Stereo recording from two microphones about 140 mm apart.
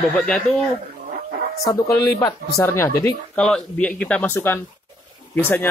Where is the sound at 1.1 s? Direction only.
75° right (ahead or behind).